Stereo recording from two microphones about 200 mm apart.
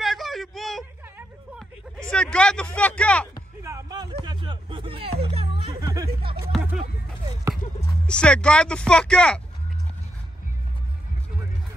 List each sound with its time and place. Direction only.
0.0 s a sound: centre (ahead or behind)
2.0 s speech: 5° left (ahead or behind)
3.6 s music: 15° right (ahead or behind)
5.8 s music: 15° right (ahead or behind)
8.1 s speech: 5° left (ahead or behind)